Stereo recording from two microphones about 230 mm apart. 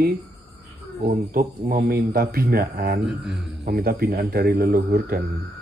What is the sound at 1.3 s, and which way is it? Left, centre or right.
Speech, right.